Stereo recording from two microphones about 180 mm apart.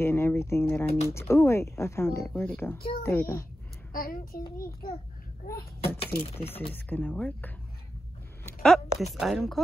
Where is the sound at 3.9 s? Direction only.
55° left (ahead or behind).